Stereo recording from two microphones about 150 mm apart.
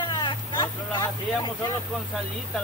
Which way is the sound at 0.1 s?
30° left (ahead or behind).